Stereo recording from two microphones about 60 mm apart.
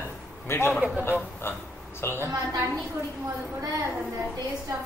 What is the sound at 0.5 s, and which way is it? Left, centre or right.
Speech, left.